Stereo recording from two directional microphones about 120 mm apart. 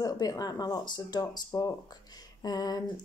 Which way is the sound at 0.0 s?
30° left (ahead or behind).